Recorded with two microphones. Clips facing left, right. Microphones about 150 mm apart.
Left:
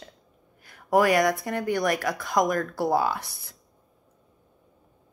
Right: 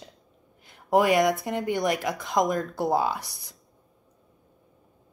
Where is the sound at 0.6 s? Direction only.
20° right (ahead or behind).